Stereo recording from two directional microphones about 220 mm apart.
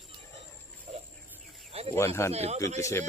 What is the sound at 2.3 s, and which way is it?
Speech, 30° right (ahead or behind).